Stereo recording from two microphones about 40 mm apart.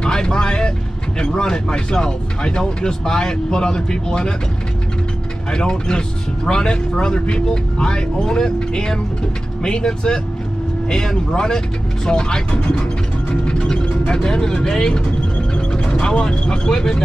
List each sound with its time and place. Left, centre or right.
0.0 s vehicle: centre
1.2 s speech: centre
5.5 s speech: centre
13.3 s music: left
13.7 s speech: centre